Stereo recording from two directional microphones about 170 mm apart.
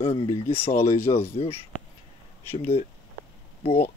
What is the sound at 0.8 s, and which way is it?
Speech, 15° left (ahead or behind).